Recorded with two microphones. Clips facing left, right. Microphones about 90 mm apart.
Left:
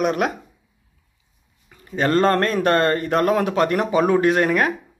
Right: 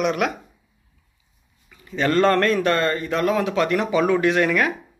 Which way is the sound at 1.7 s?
40° left (ahead or behind).